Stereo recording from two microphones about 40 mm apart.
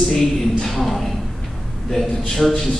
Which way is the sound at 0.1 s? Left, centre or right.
Centre.